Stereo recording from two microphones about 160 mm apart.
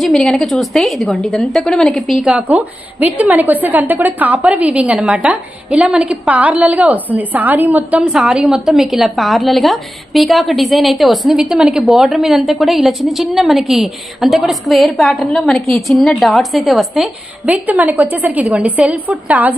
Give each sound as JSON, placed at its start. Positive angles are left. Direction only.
{"t": 0.0, "sound": "a woman's voice", "side_deg": 0}